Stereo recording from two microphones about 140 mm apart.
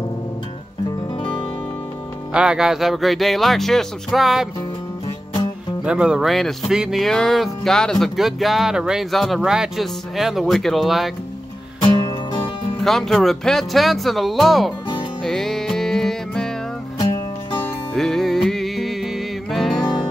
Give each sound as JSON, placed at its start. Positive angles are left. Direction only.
{"t": 2.3, "sound": "speech", "side_deg": -5}
{"t": 5.9, "sound": "speech", "side_deg": -5}
{"t": 11.8, "sound": "music", "side_deg": 30}
{"t": 12.8, "sound": "speech", "side_deg": 0}
{"t": 15.2, "sound": "music", "side_deg": 0}
{"t": 17.0, "sound": "music", "side_deg": 30}
{"t": 17.9, "sound": "music", "side_deg": 5}